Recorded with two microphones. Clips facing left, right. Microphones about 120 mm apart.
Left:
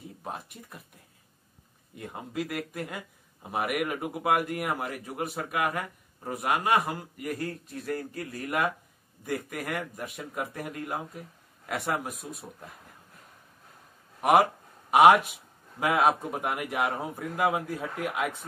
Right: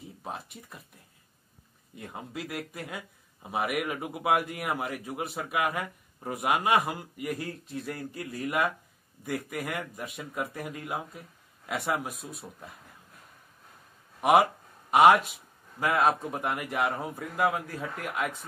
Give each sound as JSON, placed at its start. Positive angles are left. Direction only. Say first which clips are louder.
{"t": 0.2, "sound": "speech", "louder": "even", "side_deg": 0}
{"t": 2.0, "sound": "speech", "louder": "left 4 dB", "side_deg": 0}
{"t": 14.9, "sound": "speech", "louder": "left 1 dB", "side_deg": 10}